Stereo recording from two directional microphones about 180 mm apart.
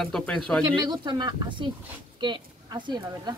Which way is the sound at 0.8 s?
25° right (ahead or behind).